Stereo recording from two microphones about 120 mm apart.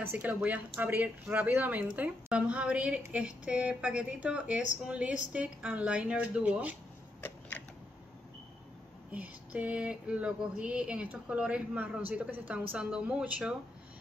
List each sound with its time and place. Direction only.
0.0 s speech: 15° right (ahead or behind)
7.2 s a sound: 15° left (ahead or behind)
9.1 s speech: 10° right (ahead or behind)